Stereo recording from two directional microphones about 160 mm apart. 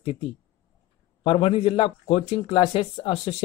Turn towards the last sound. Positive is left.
turn(degrees=35)  # may be behind; listen again after turning